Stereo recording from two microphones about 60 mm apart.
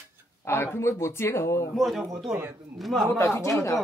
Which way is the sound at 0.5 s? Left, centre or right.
Left.